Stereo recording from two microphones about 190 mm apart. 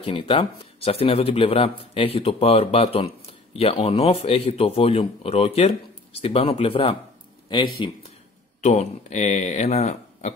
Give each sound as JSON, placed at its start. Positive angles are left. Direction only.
{"t": 0.0, "sound": "a man's voice", "side_deg": 25}
{"t": 8.5, "sound": "speech", "side_deg": 35}